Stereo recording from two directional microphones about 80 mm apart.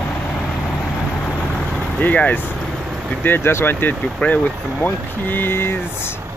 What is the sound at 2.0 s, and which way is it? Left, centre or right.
Speech, centre.